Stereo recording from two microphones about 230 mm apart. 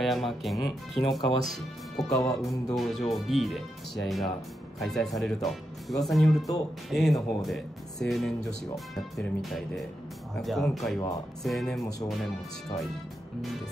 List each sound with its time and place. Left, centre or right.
0.0 s speech: centre
2.0 s speech: centre
2.4 s speech: centre